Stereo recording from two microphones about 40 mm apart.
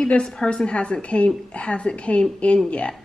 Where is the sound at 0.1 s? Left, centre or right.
Left.